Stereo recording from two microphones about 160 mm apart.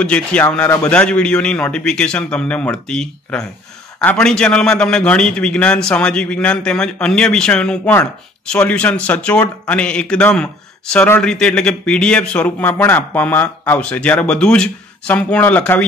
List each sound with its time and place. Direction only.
0.0 s a man's voice: 10° left (ahead or behind)